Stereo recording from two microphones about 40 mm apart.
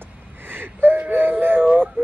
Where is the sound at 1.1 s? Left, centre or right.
Right.